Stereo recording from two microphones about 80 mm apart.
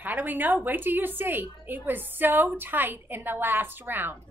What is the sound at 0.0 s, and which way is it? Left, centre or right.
A woman's voice, right.